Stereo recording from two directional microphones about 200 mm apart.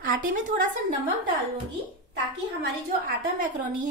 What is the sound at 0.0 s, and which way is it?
Speech, 45° right (ahead or behind).